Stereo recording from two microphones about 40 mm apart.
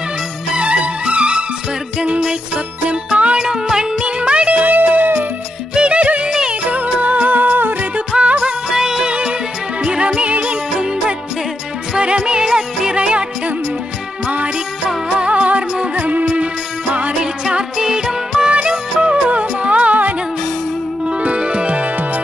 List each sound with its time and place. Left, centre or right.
0.6 s music: right
3.4 s music: centre
4.2 s music: right
4.7 s music: right
5.8 s music: right
8.2 s music: right
15.0 s music: right
17.2 s music: right
18.5 s music: right
21.0 s music: right